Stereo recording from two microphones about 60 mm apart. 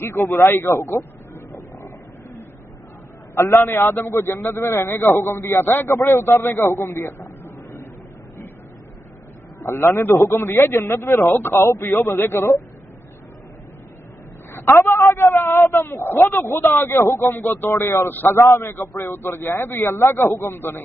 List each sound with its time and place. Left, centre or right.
0.0 s speech: left
3.3 s a man's voice: left
5.9 s a man's voice: left
6.4 s speech: left
6.9 s a sound: left
9.6 s a man's voice: left
14.5 s a man's voice: left
17.6 s a man's voice: left
18.4 s a man's voice: left